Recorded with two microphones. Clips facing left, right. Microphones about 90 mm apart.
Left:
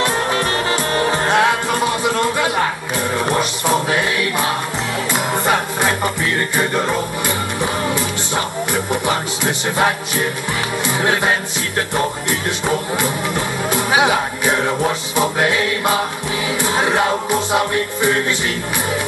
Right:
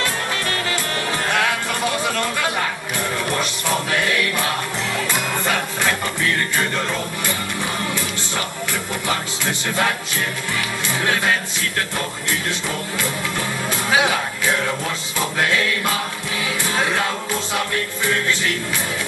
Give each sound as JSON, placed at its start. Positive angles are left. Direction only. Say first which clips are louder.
{"t": 0.0, "sound": "music", "louder": "left 6 dB", "side_deg": 25}
{"t": 13.7, "sound": "speech", "louder": "left 4 dB", "side_deg": 20}
{"t": 16.6, "sound": "music", "louder": "left 5 dB", "side_deg": 20}